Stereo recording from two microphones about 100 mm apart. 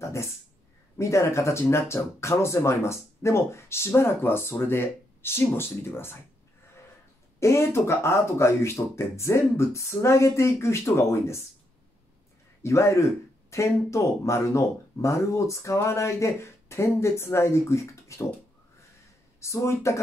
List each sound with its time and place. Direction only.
0.0 s speech: 30° left (ahead or behind)
7.3 s speech: 25° left (ahead or behind)
12.6 s speech: 30° left (ahead or behind)
19.4 s speech: 30° left (ahead or behind)